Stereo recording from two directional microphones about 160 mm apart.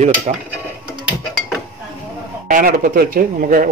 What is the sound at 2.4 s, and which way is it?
A man's voice, 60° right (ahead or behind).